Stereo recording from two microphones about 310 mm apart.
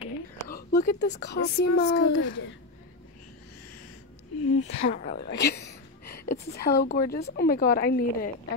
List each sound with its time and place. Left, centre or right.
0.0 s a woman's voice: left
4.5 s speech: left
4.8 s a woman's voice: left